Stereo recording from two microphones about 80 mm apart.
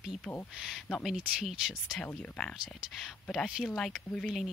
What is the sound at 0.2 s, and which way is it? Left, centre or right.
Speech, centre.